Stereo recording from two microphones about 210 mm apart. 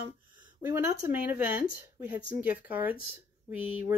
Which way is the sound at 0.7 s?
10° right (ahead or behind).